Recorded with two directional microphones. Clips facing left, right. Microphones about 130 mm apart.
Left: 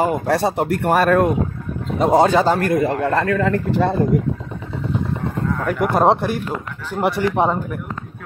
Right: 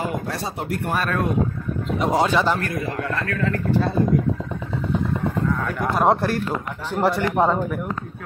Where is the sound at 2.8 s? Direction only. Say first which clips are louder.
Left 8 dB; 65° left (ahead or behind).